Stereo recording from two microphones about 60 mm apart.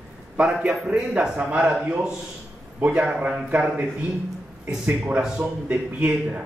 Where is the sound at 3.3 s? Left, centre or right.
Centre.